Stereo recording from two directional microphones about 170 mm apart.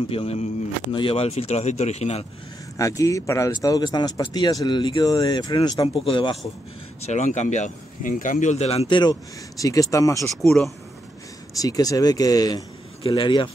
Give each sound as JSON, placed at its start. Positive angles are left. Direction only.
{"t": 0.1, "sound": "speech", "side_deg": 35}
{"t": 2.8, "sound": "speech", "side_deg": 20}
{"t": 7.0, "sound": "speech", "side_deg": 45}
{"t": 10.4, "sound": "speech", "side_deg": 0}
{"t": 11.6, "sound": "speech", "side_deg": 20}